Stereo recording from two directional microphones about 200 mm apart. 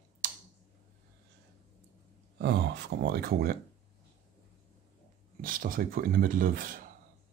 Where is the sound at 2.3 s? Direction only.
55° right (ahead or behind).